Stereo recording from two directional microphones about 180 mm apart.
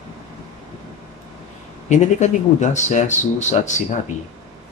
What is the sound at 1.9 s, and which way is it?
Speech, 40° left (ahead or behind).